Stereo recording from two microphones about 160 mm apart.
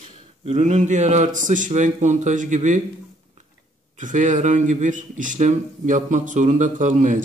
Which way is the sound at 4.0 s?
50° right (ahead or behind).